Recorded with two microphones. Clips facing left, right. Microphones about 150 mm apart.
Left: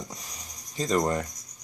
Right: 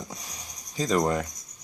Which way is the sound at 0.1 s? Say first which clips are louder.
Right 2 dB; centre (ahead or behind).